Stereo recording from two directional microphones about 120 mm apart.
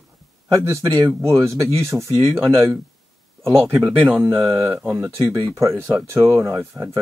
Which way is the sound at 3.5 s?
20° right (ahead or behind).